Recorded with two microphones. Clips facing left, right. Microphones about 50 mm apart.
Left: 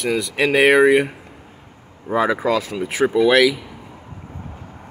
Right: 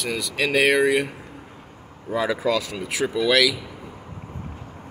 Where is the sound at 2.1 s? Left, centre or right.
Left.